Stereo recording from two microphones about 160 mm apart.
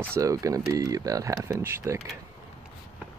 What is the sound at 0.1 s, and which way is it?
Speech, 20° right (ahead or behind).